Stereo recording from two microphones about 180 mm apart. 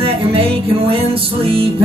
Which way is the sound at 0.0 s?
30° right (ahead or behind).